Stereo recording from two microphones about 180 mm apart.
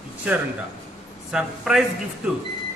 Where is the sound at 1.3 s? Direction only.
5° right (ahead or behind).